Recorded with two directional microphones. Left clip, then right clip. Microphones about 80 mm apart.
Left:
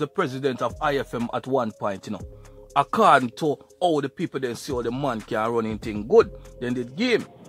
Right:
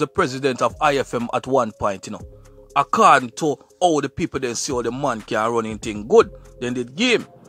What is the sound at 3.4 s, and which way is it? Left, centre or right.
Speech, right.